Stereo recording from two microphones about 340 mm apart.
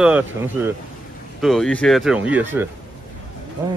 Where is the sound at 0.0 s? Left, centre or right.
Centre.